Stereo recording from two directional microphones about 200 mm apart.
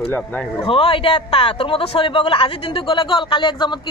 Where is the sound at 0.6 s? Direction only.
25° left (ahead or behind).